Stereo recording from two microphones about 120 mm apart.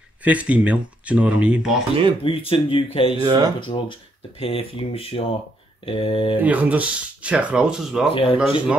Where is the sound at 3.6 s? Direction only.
45° left (ahead or behind).